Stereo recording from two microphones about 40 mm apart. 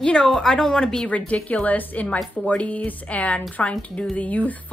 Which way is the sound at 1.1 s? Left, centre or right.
Left.